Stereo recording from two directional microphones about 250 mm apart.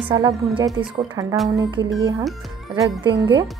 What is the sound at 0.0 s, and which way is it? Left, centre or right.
A woman's voice, centre.